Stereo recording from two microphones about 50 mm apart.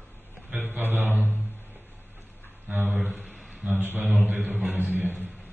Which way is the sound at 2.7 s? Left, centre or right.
Right.